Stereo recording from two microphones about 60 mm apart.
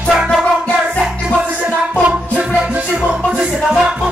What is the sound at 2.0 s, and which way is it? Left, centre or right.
Music, right.